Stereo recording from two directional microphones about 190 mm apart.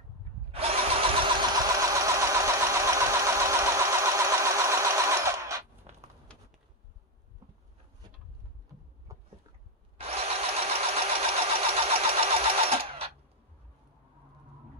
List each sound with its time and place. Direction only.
0.5 s engine: 30° right (ahead or behind); by 5.6 s 15° right (ahead or behind)
9.1 s a sound: 15° right (ahead or behind)
9.9 s engine: 30° right (ahead or behind)